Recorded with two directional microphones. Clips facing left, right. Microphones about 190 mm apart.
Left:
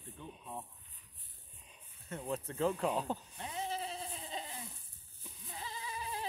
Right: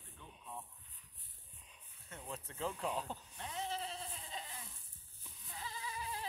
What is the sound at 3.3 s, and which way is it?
Goat, 10° left (ahead or behind).